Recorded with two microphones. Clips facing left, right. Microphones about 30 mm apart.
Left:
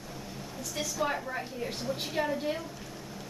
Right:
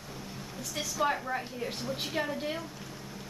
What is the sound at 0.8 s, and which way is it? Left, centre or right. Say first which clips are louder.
A woman's voice: right 1 dB; centre.